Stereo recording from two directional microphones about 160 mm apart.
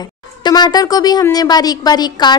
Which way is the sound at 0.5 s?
25° left (ahead or behind).